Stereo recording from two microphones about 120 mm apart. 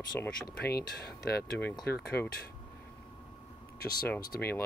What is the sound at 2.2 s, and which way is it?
Speech, 20° left (ahead or behind).